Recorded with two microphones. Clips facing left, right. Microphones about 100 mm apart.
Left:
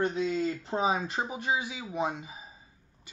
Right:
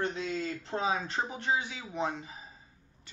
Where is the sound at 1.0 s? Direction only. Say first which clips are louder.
Left 2 dB; 10° left (ahead or behind).